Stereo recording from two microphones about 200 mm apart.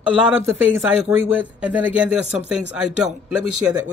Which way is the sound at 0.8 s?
5° right (ahead or behind).